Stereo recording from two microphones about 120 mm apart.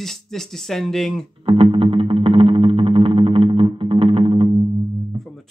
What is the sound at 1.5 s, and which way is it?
Music, 50° right (ahead or behind).